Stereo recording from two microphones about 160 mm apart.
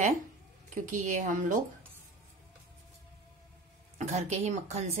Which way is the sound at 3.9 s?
45° right (ahead or behind).